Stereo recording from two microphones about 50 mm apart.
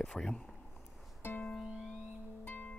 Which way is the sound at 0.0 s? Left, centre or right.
Centre.